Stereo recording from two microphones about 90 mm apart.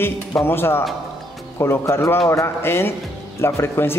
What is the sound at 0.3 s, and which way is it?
A man's voice, 25° left (ahead or behind).